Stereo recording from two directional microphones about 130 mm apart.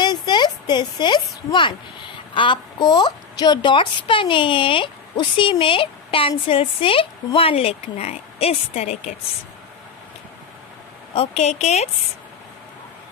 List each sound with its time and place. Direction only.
0.0 s a woman's voice: 35° left (ahead or behind); by 9.1 s 55° left (ahead or behind)
11.1 s a woman's voice: 55° left (ahead or behind)